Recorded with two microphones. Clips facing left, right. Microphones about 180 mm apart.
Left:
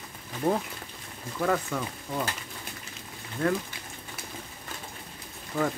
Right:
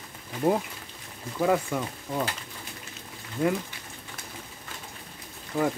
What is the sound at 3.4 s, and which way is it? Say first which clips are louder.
Speech: right 1 dB; 15° right (ahead or behind).